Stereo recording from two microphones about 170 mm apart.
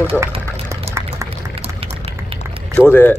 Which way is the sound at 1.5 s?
35° right (ahead or behind).